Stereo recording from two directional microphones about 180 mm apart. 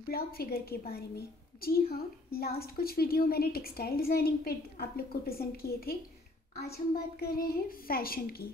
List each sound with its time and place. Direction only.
0.0 s a woman's voice: 55° left (ahead or behind)
7.2 s a woman's voice: 60° left (ahead or behind)